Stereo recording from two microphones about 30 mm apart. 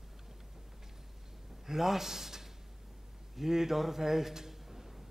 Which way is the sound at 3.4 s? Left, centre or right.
Centre.